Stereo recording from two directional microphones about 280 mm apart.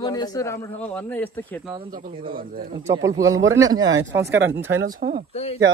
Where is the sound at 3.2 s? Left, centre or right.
Centre.